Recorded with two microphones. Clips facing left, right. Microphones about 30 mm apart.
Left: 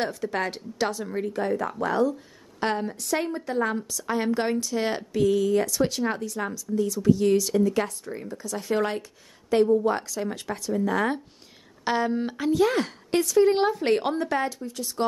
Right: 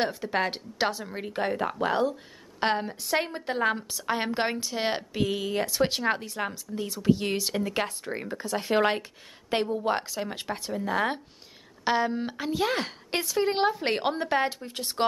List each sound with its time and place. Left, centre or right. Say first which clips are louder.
0.0 s a woman's voice: even; right
10.7 s a woman's voice: left 3 dB; centre; by 15.0 s right